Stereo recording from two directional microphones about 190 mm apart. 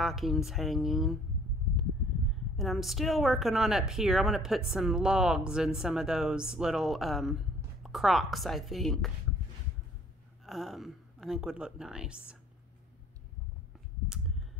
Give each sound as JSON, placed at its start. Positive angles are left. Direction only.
{"t": 0.0, "sound": "a woman's voice", "side_deg": 0}
{"t": 2.5, "sound": "a woman's voice", "side_deg": 0}
{"t": 10.4, "sound": "a woman's voice", "side_deg": 0}